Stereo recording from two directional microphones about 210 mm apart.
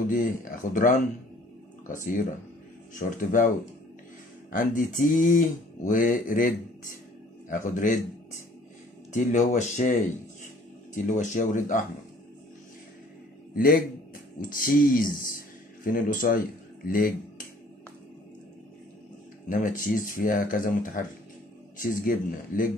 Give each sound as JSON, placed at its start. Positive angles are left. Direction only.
{"t": 0.0, "sound": "speech", "side_deg": 40}
{"t": 1.9, "sound": "speech", "side_deg": 40}
{"t": 9.1, "sound": "speech", "side_deg": 35}
{"t": 11.1, "sound": "speech", "side_deg": 35}
{"t": 14.4, "sound": "speech", "side_deg": 40}
{"t": 19.5, "sound": "speech", "side_deg": 40}